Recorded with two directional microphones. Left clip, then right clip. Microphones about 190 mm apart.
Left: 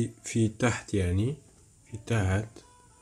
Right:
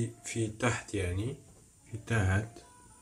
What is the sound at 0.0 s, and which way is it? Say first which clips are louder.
Speech: left 5 dB; 55° left (ahead or behind).